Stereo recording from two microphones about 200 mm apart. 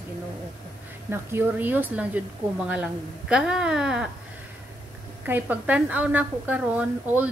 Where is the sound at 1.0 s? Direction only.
10° right (ahead or behind).